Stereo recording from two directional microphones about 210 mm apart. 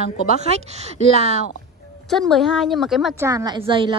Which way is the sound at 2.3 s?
Centre (ahead or behind).